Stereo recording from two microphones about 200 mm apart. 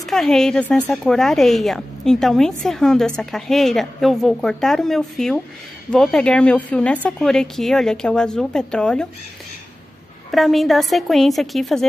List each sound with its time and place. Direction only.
0.0 s a woman's voice: centre (ahead or behind)
10.3 s a woman's voice: centre (ahead or behind)